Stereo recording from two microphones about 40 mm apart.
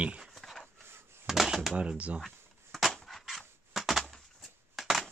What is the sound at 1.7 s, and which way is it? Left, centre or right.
Speech, right.